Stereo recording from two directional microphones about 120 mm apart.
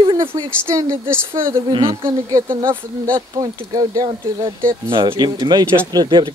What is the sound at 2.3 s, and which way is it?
A woman's voice, 30° right (ahead or behind).